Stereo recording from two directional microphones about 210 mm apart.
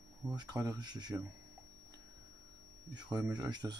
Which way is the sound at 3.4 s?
20° right (ahead or behind).